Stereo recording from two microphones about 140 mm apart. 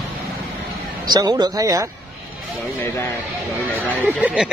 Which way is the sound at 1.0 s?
30° right (ahead or behind).